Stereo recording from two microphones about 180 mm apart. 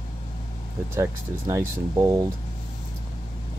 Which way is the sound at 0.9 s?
15° right (ahead or behind).